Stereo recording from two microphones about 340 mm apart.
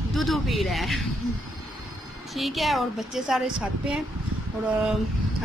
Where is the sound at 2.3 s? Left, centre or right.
Centre.